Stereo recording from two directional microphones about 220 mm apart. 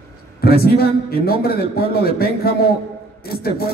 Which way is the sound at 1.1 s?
45° left (ahead or behind).